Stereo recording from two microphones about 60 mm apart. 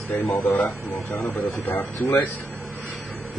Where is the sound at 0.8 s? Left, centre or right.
Left.